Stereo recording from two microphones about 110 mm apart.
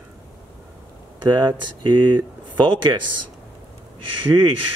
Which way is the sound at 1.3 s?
45° right (ahead or behind).